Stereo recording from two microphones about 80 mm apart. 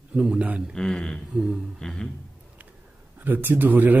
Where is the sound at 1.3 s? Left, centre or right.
Centre.